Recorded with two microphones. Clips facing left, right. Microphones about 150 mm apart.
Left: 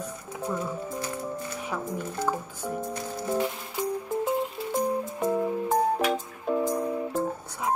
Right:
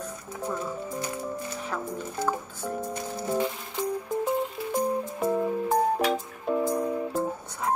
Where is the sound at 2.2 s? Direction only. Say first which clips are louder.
Right 1 dB; centre (ahead or behind).